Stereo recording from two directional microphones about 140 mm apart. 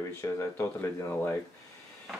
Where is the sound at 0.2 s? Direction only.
15° left (ahead or behind).